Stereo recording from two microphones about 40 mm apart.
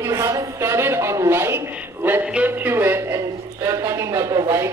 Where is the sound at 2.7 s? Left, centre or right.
Right.